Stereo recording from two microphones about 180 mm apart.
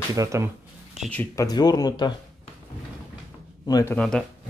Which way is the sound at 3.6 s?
20° left (ahead or behind).